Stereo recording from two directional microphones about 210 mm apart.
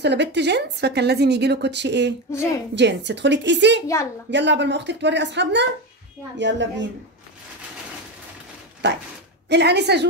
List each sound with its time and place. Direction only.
0.0 s a woman's voice: 55° right (ahead or behind)
3.8 s a woman's voice: 15° left (ahead or behind)
4.3 s speech: 55° right (ahead or behind)
9.5 s a woman's voice: 55° right (ahead or behind)